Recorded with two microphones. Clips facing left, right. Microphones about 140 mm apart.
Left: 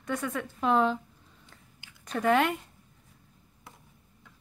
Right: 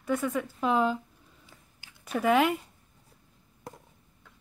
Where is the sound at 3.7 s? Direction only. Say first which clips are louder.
Right 8 dB; 45° right (ahead or behind).